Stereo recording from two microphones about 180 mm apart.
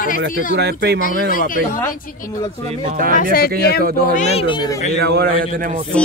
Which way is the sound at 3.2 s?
55° left (ahead or behind).